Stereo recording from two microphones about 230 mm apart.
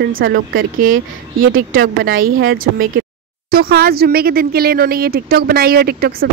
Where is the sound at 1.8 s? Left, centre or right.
Right.